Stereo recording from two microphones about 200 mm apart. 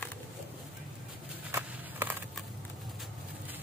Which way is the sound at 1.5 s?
10° right (ahead or behind).